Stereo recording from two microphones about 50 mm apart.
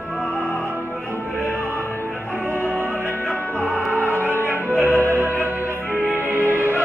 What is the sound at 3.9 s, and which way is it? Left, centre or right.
Music, right.